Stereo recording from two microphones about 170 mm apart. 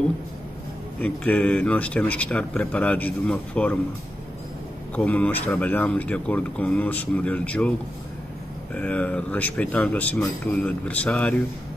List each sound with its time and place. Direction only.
1.0 s speech: 10° left (ahead or behind)
4.9 s speech: 10° left (ahead or behind)
8.7 s speech: 10° left (ahead or behind)